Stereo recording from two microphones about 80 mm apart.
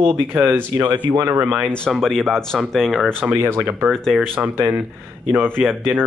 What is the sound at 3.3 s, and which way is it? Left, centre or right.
Speech, right.